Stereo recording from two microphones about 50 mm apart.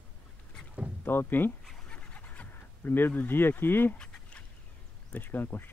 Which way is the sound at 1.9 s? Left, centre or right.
Left.